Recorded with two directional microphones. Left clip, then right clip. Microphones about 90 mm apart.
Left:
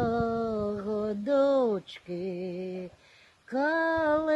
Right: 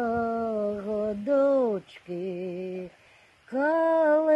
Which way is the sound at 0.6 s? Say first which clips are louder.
Right 3 dB; 25° left (ahead or behind).